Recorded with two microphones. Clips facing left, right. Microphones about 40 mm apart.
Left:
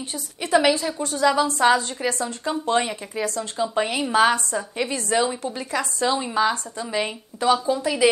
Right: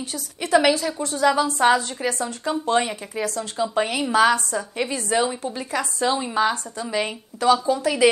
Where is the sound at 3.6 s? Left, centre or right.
Left.